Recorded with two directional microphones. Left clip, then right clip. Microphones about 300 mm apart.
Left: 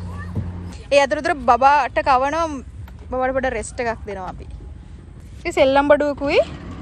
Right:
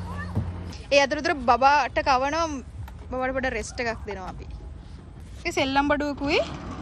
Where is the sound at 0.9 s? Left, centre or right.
Centre.